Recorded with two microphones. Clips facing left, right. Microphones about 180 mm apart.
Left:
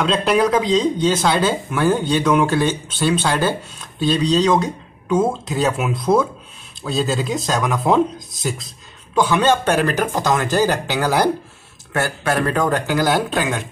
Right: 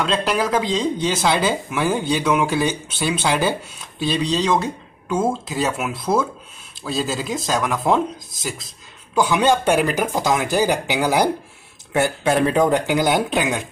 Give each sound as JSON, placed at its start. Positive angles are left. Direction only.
{"t": 0.0, "sound": "speech", "side_deg": -5}